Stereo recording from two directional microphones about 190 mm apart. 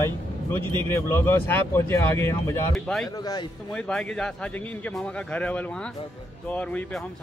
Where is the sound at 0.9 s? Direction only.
15° left (ahead or behind).